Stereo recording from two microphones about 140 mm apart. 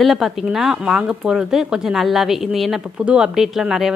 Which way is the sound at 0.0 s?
Centre (ahead or behind).